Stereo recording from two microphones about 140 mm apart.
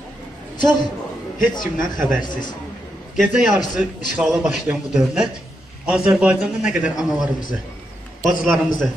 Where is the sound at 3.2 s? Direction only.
5° right (ahead or behind).